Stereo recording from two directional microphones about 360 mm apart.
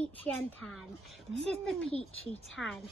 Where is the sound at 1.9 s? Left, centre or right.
Centre.